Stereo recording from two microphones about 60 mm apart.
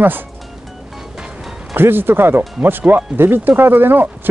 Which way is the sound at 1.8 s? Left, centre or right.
Right.